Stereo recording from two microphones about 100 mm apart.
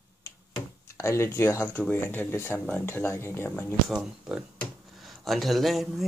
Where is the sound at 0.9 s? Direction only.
25° left (ahead or behind).